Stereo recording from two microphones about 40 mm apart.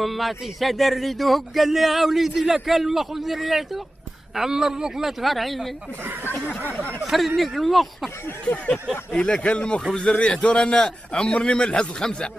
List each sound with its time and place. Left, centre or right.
0.0 s speech: centre
4.4 s speech: centre
5.2 s speech: centre
7.1 s speech: centre
9.1 s a man's voice: left